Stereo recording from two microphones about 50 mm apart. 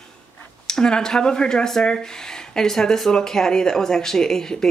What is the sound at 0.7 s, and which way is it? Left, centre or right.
Speech, centre.